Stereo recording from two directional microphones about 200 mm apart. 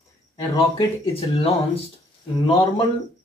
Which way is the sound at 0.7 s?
30° left (ahead or behind).